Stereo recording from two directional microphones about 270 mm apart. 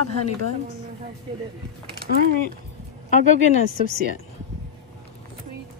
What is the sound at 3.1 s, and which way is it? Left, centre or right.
Speech, left.